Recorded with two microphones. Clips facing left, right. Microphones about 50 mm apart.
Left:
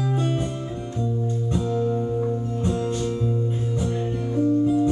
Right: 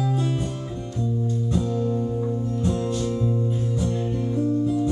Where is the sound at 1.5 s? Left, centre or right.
Left.